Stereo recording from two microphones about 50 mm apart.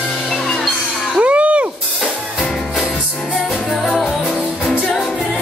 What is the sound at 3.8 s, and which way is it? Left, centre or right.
Music, centre.